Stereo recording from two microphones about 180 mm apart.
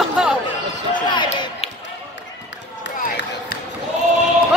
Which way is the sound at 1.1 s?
25° left (ahead or behind).